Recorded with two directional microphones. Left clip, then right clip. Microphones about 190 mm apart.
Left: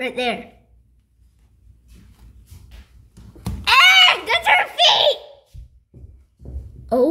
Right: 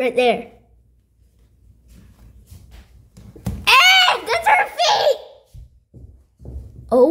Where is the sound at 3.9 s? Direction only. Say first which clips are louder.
Left 1 dB; centre (ahead or behind).